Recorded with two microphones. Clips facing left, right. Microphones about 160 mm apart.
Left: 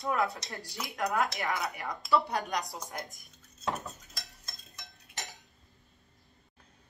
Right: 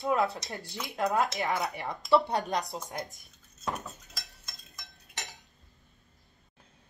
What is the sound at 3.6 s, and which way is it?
Cutlery, centre (ahead or behind).